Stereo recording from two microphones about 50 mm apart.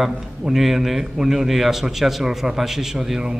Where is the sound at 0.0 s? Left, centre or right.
Centre.